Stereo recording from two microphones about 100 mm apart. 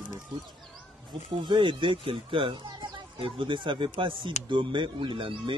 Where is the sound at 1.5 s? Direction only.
55° right (ahead or behind).